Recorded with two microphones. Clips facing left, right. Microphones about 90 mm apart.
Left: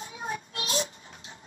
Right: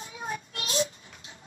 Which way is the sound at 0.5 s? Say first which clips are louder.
Right 5 dB; 35° left (ahead or behind).